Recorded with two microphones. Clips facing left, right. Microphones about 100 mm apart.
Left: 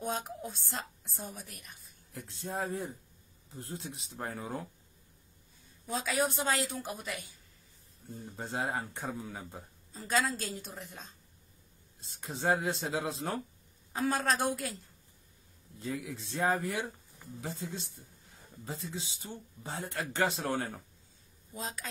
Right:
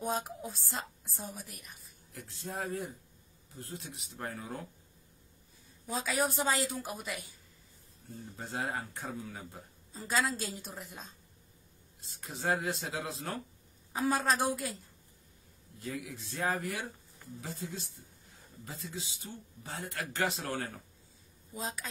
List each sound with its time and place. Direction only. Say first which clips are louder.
0.0 s a woman's voice: right 1 dB; centre (ahead or behind)
2.1 s speech: left 3 dB; 25° left (ahead or behind)
5.9 s a woman's voice: left 1 dB; centre (ahead or behind)
8.4 s speech: left 2 dB; 25° left (ahead or behind)
9.9 s a woman's voice: left 1 dB; centre (ahead or behind)
12.2 s speech: left 2 dB; 30° left (ahead or behind)
13.9 s a woman's voice: right 1 dB; centre (ahead or behind)
15.8 s speech: left 3 dB; 25° left (ahead or behind)
21.5 s a woman's voice: right 1 dB; centre (ahead or behind)